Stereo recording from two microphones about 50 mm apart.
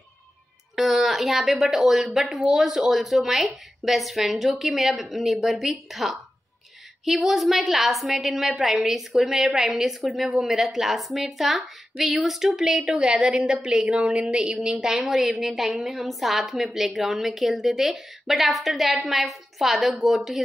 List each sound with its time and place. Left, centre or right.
0.7 s a woman's voice: centre